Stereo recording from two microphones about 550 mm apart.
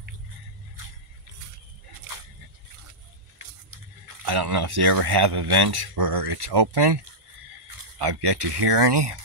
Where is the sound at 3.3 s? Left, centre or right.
Right.